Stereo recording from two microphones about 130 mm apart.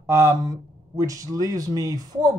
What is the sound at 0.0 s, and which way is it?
Speech, 20° right (ahead or behind).